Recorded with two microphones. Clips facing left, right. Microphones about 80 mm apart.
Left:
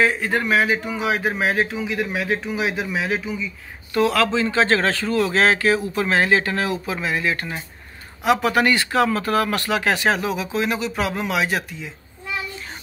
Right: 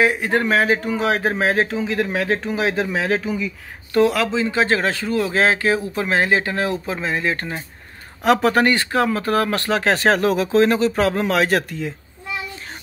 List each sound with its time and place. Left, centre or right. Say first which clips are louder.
0.0 s speech: right 2 dB; right
0.4 s speech: right 2 dB; right
4.0 s speech: right 1 dB; right
8.2 s speech: right 2 dB; right